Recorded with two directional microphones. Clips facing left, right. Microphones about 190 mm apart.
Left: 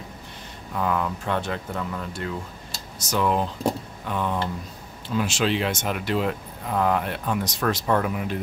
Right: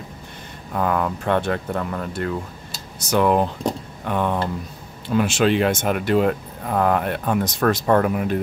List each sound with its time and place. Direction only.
0.7 s speech: 55° right (ahead or behind)